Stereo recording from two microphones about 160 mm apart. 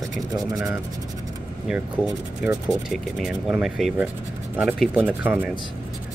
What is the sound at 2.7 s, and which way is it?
Speech, 5° right (ahead or behind).